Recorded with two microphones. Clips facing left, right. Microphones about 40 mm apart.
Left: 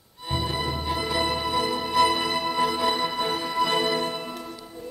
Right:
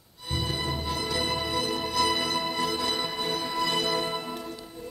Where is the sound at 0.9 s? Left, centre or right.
Left.